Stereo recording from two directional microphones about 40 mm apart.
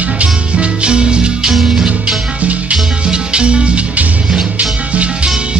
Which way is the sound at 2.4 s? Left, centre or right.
Right.